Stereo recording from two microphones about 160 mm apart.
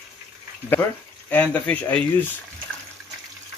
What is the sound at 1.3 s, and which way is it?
Speech, 10° left (ahead or behind).